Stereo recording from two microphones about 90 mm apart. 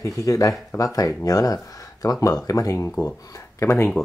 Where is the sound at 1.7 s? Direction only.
40° left (ahead or behind).